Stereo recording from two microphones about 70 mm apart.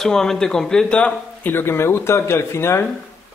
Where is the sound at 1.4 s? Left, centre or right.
Left.